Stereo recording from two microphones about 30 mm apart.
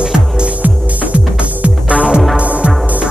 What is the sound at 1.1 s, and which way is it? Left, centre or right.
Music, right.